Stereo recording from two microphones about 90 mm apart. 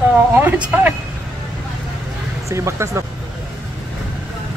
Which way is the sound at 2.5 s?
35° right (ahead or behind).